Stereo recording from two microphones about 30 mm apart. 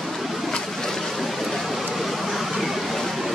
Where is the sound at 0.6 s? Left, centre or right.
Centre.